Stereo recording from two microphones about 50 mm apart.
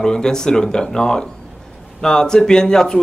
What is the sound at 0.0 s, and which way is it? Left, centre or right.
A man's voice, centre.